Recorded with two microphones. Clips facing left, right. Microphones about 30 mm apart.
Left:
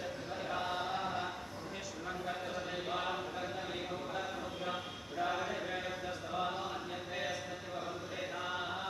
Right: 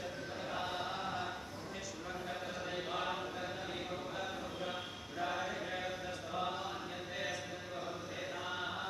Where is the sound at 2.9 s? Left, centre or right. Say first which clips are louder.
Left 2 dB; centre.